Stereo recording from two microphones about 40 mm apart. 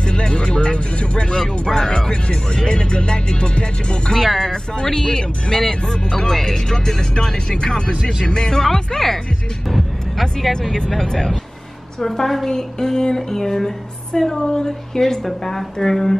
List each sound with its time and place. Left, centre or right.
0.0 s speech: left
4.1 s speech: centre
4.4 s speech: centre
9.7 s vehicle: centre
10.7 s speech: centre